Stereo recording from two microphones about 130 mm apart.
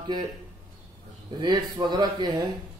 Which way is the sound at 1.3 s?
35° right (ahead or behind).